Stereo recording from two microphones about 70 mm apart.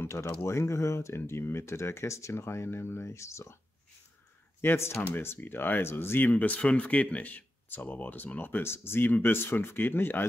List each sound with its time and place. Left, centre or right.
0.0 s speech: left
4.6 s speech: left